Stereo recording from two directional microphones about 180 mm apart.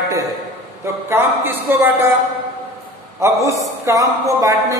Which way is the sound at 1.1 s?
10° right (ahead or behind).